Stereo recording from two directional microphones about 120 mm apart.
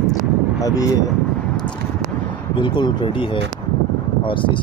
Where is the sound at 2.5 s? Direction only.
40° left (ahead or behind).